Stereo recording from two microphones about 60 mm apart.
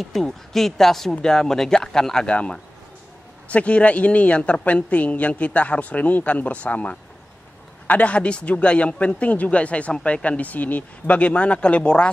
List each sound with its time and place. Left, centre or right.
0.0 s a woman's voice: centre